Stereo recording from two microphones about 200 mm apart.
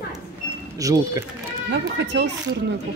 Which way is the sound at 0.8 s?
15° right (ahead or behind).